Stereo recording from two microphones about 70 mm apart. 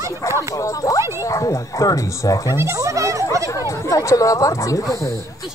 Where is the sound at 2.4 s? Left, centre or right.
Right.